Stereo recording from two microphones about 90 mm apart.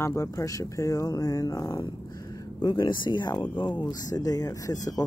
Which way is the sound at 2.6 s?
55° left (ahead or behind).